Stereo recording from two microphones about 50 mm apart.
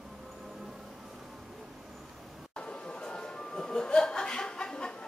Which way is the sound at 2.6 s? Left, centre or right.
Centre.